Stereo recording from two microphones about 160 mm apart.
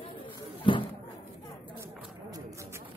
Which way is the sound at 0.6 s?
30° left (ahead or behind).